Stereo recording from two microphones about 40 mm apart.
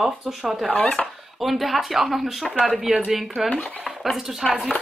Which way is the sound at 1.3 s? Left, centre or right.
Centre.